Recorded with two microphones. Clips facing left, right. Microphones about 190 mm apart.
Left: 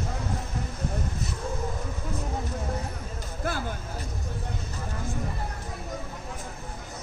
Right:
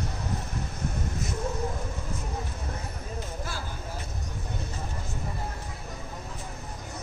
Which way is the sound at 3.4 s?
55° left (ahead or behind).